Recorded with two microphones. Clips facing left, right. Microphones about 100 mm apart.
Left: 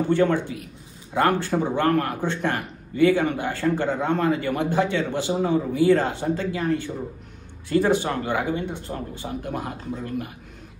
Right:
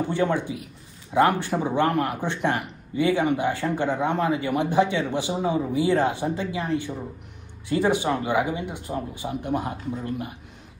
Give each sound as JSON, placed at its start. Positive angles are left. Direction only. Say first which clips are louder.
{"t": 0.1, "sound": "a man's voice", "louder": "left 3 dB", "side_deg": -15}